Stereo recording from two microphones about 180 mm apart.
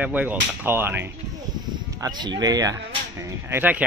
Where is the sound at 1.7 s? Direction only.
25° right (ahead or behind).